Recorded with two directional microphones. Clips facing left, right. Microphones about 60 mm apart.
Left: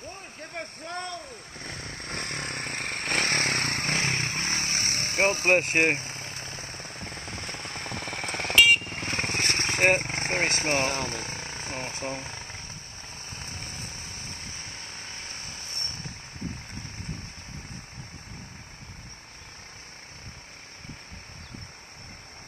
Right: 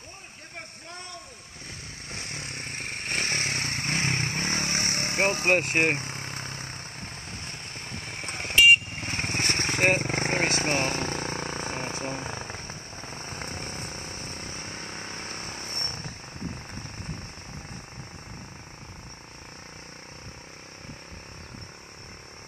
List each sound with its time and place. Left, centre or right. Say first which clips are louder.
0.6 s vehicle: left 7 dB; left
4.4 s vehicle: right 1 dB; right
7.1 s vehicle: left 3 dB; left
10.0 s vehicle: right 1 dB; right